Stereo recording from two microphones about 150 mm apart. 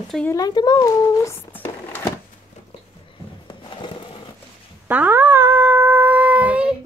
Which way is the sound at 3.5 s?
30° left (ahead or behind).